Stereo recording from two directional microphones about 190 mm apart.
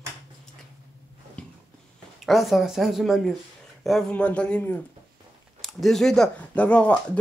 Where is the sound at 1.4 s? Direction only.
5° left (ahead or behind).